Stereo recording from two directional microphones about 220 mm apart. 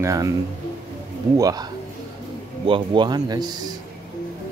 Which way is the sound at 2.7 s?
20° right (ahead or behind).